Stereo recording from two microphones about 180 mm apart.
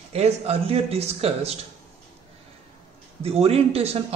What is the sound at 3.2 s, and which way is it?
Speech, 35° right (ahead or behind).